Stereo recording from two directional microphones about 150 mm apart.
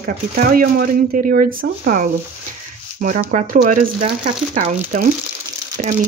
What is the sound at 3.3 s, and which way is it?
Speech, 55° right (ahead or behind).